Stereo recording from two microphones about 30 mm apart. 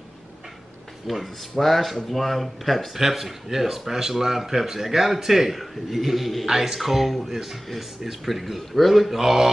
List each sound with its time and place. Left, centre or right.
1.0 s a man's voice: centre
6.4 s a man's voice: centre